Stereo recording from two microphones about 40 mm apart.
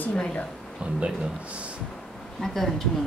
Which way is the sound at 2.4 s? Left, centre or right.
Centre.